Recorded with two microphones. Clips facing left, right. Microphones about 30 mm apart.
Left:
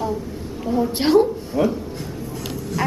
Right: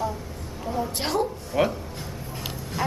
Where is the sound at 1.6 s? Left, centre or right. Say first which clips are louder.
Left 3 dB; right.